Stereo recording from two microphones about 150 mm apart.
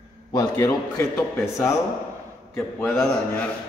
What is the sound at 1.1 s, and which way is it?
A man's voice, 20° left (ahead or behind).